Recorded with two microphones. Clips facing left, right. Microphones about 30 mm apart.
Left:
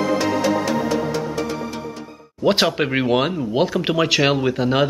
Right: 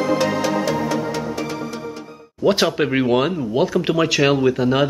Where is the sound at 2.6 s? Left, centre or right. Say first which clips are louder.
Right 1 dB; centre.